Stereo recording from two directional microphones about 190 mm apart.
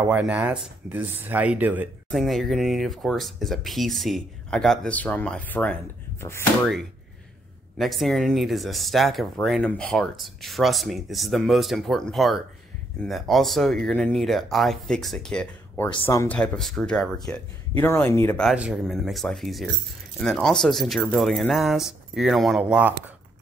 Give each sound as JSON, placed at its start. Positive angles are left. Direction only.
{"t": 0.0, "sound": "speech", "side_deg": -10}
{"t": 7.7, "sound": "speech", "side_deg": 0}
{"t": 15.9, "sound": "speech", "side_deg": 20}
{"t": 16.3, "sound": "speech", "side_deg": 5}
{"t": 18.5, "sound": "speech", "side_deg": -5}